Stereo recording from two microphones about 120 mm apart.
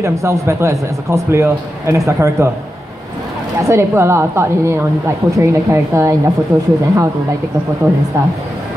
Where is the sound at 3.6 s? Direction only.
25° right (ahead or behind).